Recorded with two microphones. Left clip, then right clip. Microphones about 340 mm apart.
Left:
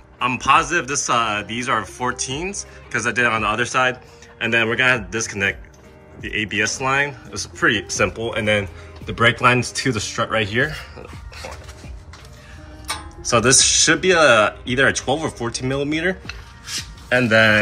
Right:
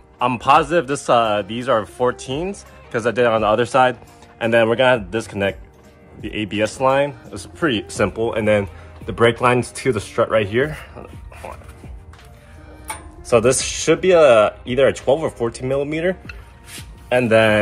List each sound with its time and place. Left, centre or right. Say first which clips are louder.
0.2 s speech: right 2 dB; centre
13.3 s speech: left 1 dB; centre